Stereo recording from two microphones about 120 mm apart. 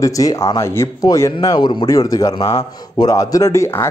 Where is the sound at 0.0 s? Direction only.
30° left (ahead or behind).